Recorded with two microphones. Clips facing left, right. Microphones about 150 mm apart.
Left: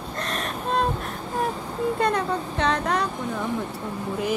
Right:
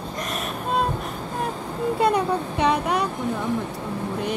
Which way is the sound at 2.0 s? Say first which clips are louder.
Right 6 dB; 10° right (ahead or behind).